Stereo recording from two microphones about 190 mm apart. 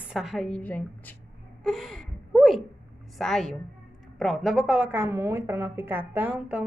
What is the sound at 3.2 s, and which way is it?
A woman's voice, centre (ahead or behind).